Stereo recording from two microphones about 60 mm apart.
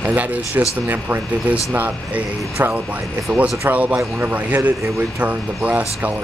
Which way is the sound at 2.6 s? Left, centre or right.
Right.